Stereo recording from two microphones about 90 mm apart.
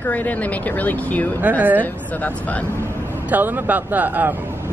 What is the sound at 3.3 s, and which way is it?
Speech, 20° right (ahead or behind).